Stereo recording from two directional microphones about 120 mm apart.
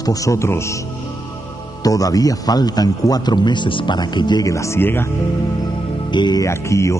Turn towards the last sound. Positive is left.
turn(degrees=25)  # may be behind; listen again after turning